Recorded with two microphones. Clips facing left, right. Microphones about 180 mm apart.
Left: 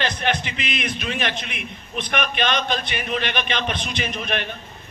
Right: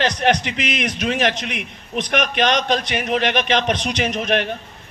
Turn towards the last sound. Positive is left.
turn(degrees=-85)